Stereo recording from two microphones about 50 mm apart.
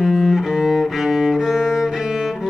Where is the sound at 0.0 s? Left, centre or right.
Centre.